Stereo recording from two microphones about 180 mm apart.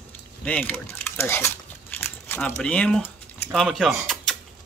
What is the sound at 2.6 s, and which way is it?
Speech, 5° left (ahead or behind).